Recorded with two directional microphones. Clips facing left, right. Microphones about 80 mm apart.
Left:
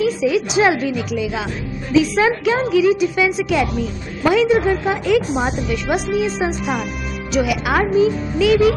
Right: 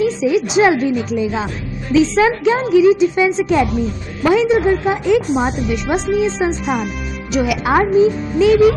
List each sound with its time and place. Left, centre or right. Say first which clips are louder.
0.0 s a woman's voice: right 2 dB; right
5.3 s speech: right 3 dB; centre
5.9 s a woman's voice: right 3 dB; right
6.6 s speech: right 3 dB; centre
7.3 s a woman's voice: right 3 dB; right